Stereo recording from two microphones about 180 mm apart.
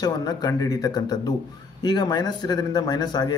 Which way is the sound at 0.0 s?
20° left (ahead or behind).